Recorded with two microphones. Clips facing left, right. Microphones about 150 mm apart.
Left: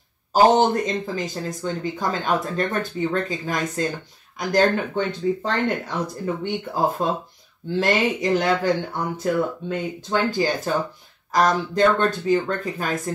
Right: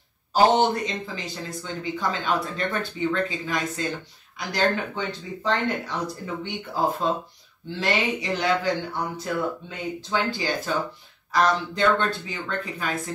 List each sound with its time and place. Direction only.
0.3 s speech: 45° left (ahead or behind)